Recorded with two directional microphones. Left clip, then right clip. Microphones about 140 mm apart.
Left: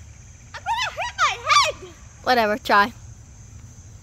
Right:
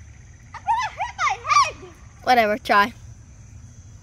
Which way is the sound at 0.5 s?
45° left (ahead or behind).